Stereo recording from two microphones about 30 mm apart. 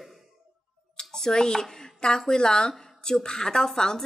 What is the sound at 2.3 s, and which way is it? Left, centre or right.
Speech, left.